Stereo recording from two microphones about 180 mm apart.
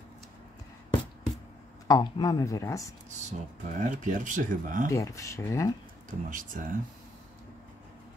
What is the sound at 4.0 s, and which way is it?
Speech, 45° right (ahead or behind).